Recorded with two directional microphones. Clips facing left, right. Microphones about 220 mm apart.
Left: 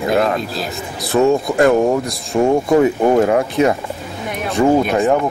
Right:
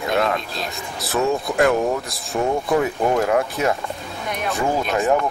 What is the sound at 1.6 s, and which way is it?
A man's voice, 30° left (ahead or behind).